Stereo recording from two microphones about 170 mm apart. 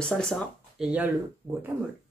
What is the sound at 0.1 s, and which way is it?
Speech, centre (ahead or behind).